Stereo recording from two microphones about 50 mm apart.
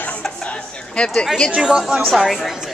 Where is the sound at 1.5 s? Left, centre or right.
Centre.